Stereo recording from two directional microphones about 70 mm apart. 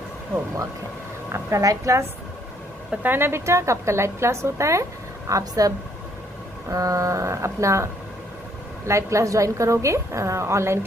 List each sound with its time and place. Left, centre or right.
1.6 s a woman's voice: right
2.9 s a woman's voice: right
5.3 s a woman's voice: right
6.7 s a woman's voice: right